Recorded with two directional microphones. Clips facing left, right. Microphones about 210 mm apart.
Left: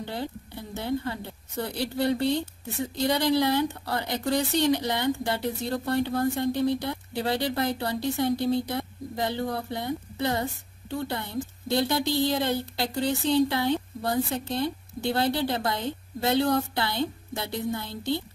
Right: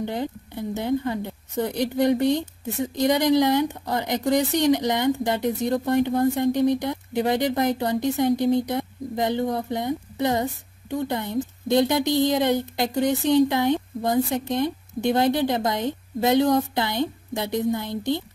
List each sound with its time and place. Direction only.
0.0 s a woman's voice: 15° right (ahead or behind)